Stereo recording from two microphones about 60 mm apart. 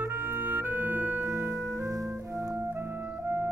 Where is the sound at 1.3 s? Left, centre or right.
Right.